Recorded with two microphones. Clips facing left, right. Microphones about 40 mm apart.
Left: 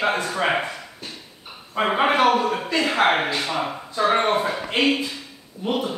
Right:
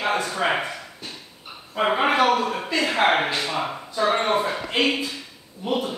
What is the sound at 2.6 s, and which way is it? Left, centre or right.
Speech, centre.